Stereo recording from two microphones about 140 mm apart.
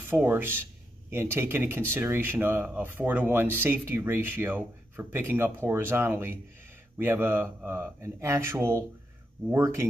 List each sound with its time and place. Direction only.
0.0 s speech: 15° right (ahead or behind)